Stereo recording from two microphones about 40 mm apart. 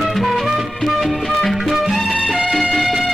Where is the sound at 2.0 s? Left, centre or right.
Left.